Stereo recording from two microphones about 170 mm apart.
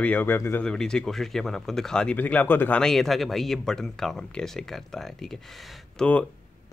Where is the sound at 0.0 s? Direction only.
10° left (ahead or behind).